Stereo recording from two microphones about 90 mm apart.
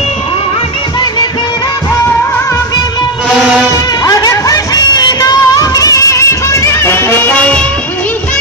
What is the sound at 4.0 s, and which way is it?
Music, 45° left (ahead or behind).